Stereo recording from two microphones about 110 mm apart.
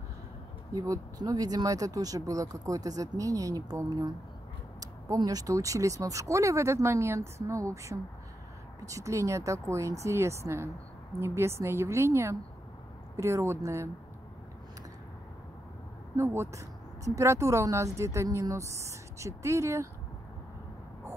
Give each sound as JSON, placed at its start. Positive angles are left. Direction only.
{"t": 0.7, "sound": "speech", "side_deg": -35}
{"t": 16.2, "sound": "speech", "side_deg": -25}